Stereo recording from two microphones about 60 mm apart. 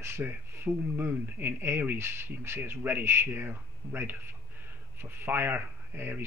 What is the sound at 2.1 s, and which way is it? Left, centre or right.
Speech, right.